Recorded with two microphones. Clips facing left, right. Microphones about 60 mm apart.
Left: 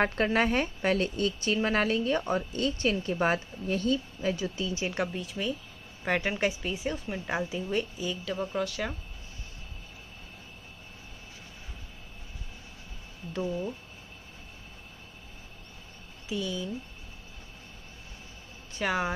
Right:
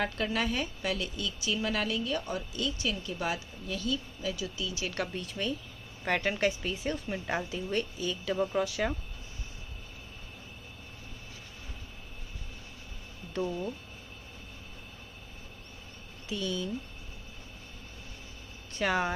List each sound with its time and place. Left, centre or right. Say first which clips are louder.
0.0 s a woman's voice: left 5 dB; left
4.9 s a woman's voice: left 3 dB; centre
16.3 s a woman's voice: left 1 dB; centre
18.7 s speech: even; centre